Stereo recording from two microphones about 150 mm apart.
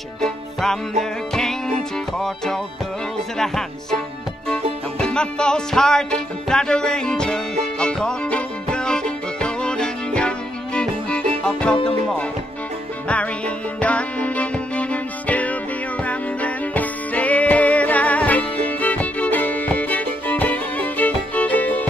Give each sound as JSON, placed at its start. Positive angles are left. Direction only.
{"t": 0.2, "sound": "music", "side_deg": 5}
{"t": 13.7, "sound": "music", "side_deg": 10}